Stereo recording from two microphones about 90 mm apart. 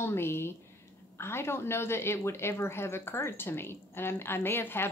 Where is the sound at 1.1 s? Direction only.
30° left (ahead or behind).